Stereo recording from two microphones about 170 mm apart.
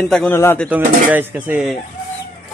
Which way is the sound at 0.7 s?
10° right (ahead or behind).